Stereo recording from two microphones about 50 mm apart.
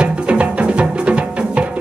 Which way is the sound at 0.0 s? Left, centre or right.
Right.